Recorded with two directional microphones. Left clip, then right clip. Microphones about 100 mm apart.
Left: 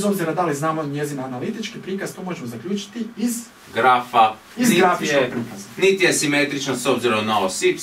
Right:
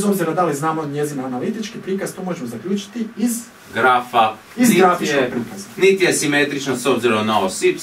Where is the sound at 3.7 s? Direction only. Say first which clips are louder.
Right 1 dB; 10° right (ahead or behind).